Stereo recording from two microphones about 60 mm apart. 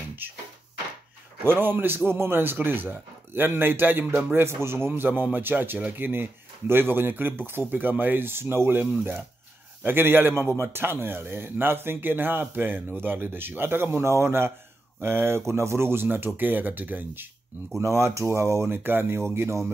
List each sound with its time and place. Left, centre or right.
0.2 s speech: right
1.4 s speech: right
17.7 s speech: right